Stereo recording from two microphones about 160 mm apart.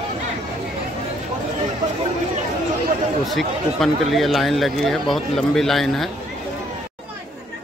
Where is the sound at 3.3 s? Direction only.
Centre (ahead or behind).